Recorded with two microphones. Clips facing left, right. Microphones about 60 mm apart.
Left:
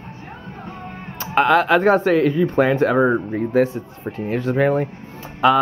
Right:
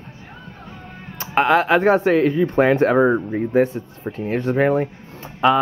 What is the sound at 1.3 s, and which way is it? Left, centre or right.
Speech, centre.